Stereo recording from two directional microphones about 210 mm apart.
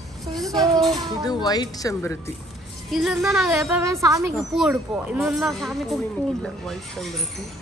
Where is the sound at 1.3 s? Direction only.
20° left (ahead or behind).